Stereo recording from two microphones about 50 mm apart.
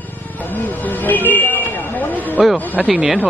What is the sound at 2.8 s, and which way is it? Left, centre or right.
Speech, centre.